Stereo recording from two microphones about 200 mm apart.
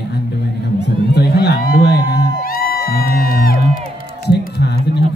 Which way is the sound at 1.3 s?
55° left (ahead or behind).